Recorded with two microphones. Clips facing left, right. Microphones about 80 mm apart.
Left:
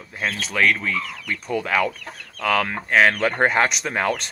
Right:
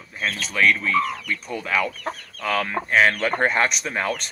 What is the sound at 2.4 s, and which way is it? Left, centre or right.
Speech, left.